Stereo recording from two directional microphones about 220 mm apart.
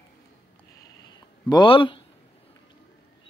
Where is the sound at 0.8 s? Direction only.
20° left (ahead or behind).